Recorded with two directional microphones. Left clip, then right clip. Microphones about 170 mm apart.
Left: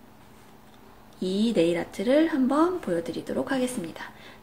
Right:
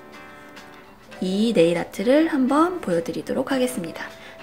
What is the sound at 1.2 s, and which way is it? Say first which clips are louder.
Speech: right 5 dB; 40° right (ahead or behind).